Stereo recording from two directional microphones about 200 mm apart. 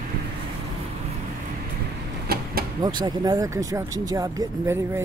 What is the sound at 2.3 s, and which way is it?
Vehicle, 50° right (ahead or behind).